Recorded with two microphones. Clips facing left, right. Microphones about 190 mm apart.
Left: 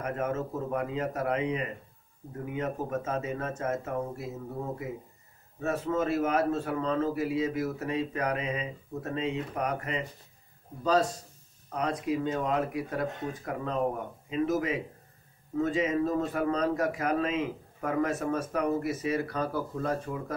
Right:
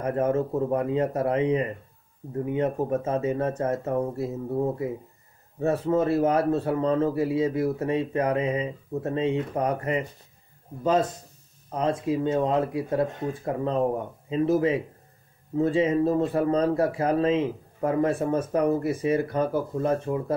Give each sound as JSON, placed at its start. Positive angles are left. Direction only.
{"t": 0.0, "sound": "speech", "side_deg": -30}